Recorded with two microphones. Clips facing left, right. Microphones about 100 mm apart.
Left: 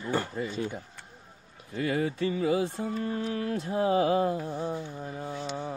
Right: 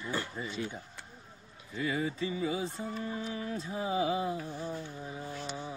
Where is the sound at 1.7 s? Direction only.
60° left (ahead or behind).